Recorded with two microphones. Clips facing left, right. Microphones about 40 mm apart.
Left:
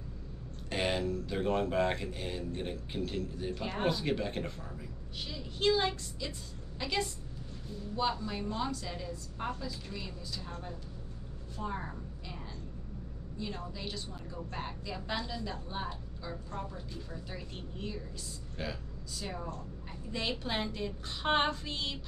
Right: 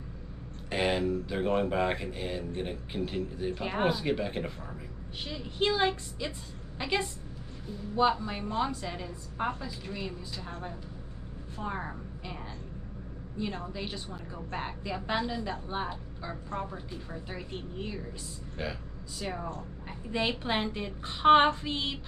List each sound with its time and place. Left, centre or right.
0.7 s speech: centre
5.2 s a woman's voice: right
13.4 s a woman's voice: right